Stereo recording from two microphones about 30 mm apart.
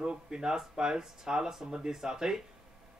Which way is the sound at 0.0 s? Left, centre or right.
Right.